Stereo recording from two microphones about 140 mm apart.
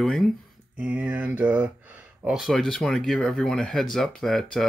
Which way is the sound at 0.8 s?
10° right (ahead or behind).